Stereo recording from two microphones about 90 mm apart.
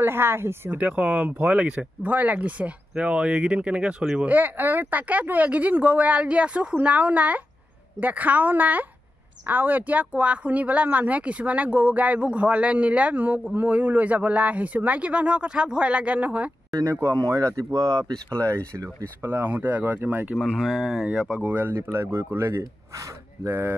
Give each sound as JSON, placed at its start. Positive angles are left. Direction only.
{"t": 0.0, "sound": "speech", "side_deg": -25}
{"t": 0.7, "sound": "speech", "side_deg": -15}
{"t": 4.3, "sound": "speech", "side_deg": -20}
{"t": 16.7, "sound": "speech", "side_deg": -35}
{"t": 19.2, "sound": "speech", "side_deg": -25}
{"t": 20.3, "sound": "speech", "side_deg": 0}